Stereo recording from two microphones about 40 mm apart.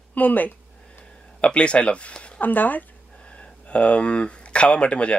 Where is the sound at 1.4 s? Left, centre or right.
Left.